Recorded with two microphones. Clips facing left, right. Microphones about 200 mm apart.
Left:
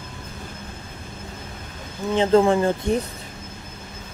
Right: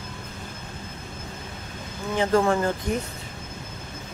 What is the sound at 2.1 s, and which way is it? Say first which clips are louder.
Speech: left 4 dB; 20° left (ahead or behind).